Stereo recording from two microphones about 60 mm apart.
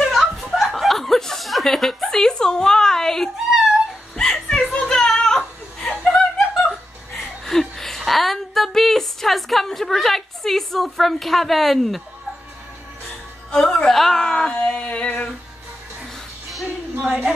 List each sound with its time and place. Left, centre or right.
0.0 s chuckle: centre
4.1 s music: centre
7.2 s a sound: centre
13.5 s a woman's voice: centre
14.9 s a sound: left
16.6 s music: right